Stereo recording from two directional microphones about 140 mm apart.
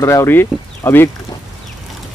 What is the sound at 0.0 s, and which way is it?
Speech, 20° left (ahead or behind).